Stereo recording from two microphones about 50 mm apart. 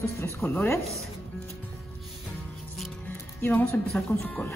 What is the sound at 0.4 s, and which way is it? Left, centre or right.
Speech, left.